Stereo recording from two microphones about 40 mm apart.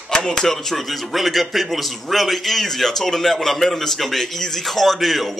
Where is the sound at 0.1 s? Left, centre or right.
Centre.